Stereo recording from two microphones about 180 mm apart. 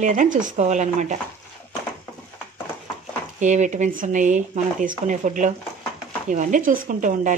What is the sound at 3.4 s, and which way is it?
Speech, 40° right (ahead or behind).